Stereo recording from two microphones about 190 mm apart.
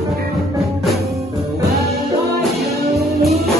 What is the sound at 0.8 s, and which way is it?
Music, centre (ahead or behind).